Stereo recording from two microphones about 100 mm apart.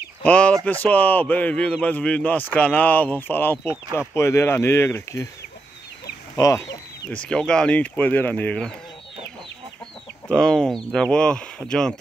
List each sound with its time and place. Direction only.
0.2 s speech: 15° left (ahead or behind)
6.3 s speech: 35° left (ahead or behind)
7.1 s speech: 10° left (ahead or behind)
10.2 s speech: 5° left (ahead or behind)